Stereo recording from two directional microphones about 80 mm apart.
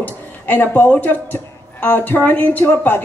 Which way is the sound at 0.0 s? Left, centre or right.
Left.